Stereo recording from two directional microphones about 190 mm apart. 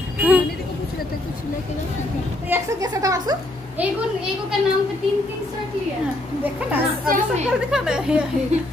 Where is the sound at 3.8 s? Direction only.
5° right (ahead or behind).